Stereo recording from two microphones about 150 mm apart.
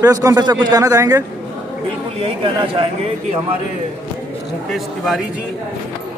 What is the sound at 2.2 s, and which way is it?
Speech, 35° right (ahead or behind).